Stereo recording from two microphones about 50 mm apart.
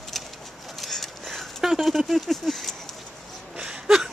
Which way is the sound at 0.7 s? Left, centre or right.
Centre.